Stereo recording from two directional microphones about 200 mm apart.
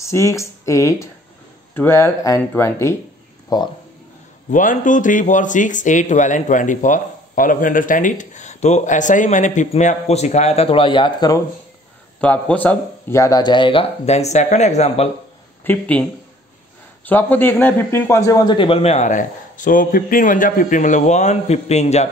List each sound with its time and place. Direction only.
0.0 s speech: 15° left (ahead or behind)
4.5 s a man's voice: 40° left (ahead or behind); by 11.4 s 20° left (ahead or behind)
12.2 s a man's voice: 5° left (ahead or behind); by 15.0 s 35° left (ahead or behind)
15.6 s a man's voice: 10° left (ahead or behind); by 22.1 s 35° left (ahead or behind)